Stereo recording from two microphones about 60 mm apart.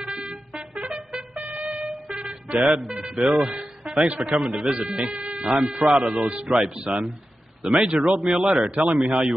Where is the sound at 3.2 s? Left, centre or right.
Centre.